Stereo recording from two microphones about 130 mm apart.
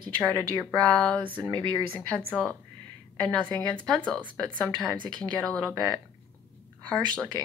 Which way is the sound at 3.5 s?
5° left (ahead or behind).